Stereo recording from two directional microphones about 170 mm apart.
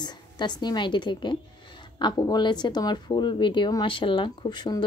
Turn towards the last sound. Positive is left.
turn(degrees=25)  # may be behind; listen again after turning